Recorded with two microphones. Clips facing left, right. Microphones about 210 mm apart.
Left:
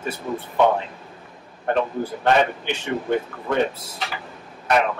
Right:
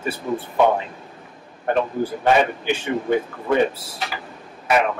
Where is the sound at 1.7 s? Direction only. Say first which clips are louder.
Right 1 dB; 5° right (ahead or behind).